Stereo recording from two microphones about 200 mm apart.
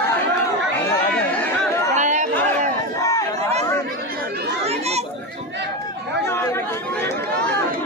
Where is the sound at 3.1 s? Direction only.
15° left (ahead or behind).